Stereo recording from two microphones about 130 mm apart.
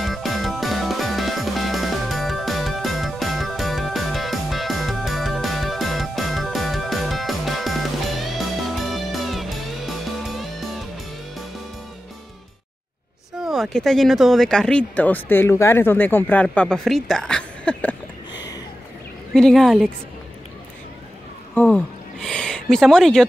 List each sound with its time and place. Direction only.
0.0 s music: centre (ahead or behind)
13.4 s speech: centre (ahead or behind); by 16.4 s 15° left (ahead or behind)
16.4 s a woman's voice: 5° left (ahead or behind)
19.3 s a woman's voice: centre (ahead or behind)
21.5 s speech: 5° left (ahead or behind)